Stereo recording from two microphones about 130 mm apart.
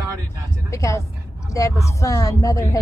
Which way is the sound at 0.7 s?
25° left (ahead or behind).